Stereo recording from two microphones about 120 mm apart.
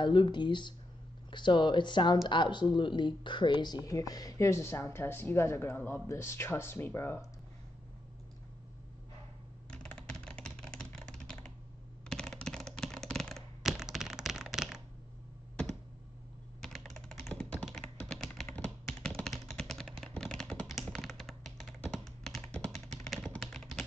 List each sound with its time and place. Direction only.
0.0 s speech: 40° left (ahead or behind); by 7.2 s 20° left (ahead or behind)
9.7 s computer keyboard: 5° left (ahead or behind)
16.6 s computer keyboard: 5° left (ahead or behind)
19.0 s a sound: 5° left (ahead or behind)